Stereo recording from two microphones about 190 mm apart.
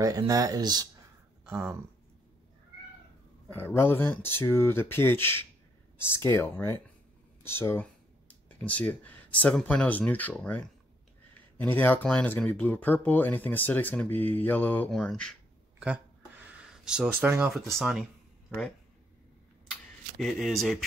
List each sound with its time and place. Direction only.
0.0 s speech: 20° right (ahead or behind)
1.4 s speech: 10° right (ahead or behind)
3.4 s speech: 10° left (ahead or behind)
16.4 s speech: 5° right (ahead or behind)
19.7 s camera: centre (ahead or behind)